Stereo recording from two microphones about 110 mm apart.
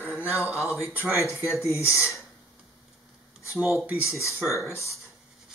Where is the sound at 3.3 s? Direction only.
10° right (ahead or behind).